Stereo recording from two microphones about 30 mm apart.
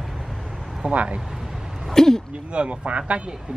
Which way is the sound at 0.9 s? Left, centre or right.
Right.